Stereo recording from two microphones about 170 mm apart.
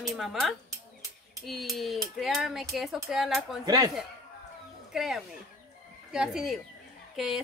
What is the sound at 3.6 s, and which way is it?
Speech, 25° right (ahead or behind).